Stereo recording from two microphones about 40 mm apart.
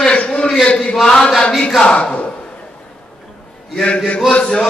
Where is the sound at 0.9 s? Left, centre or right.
Centre.